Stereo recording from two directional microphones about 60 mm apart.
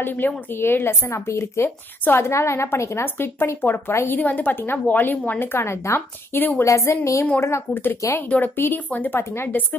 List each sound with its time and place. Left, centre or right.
0.0 s a woman's voice: left
4.2 s a woman's voice: left
6.3 s a woman's voice: left
6.6 s a woman's voice: left
7.7 s a woman's voice: left
9.1 s a woman's voice: left